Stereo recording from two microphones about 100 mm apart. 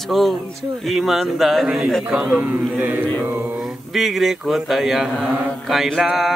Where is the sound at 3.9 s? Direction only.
Centre (ahead or behind).